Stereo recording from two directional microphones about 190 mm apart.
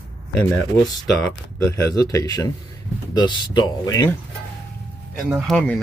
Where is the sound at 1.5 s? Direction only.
15° left (ahead or behind).